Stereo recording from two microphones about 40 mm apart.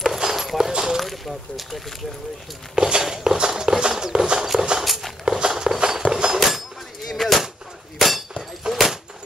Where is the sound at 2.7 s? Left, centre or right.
Right.